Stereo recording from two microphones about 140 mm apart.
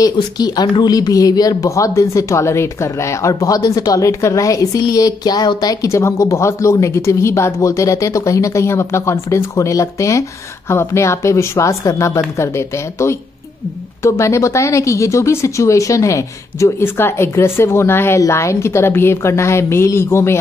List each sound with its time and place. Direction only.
0.0 s speech: 30° left (ahead or behind)